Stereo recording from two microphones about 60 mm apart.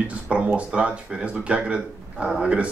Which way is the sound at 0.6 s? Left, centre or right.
Centre.